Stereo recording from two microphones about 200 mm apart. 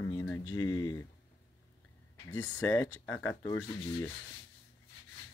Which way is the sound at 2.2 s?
15° left (ahead or behind).